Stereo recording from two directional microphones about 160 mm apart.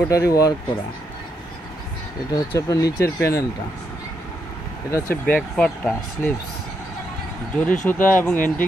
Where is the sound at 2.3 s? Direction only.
20° left (ahead or behind).